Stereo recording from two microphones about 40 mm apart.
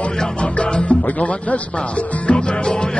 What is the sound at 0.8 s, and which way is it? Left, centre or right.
Speech, left.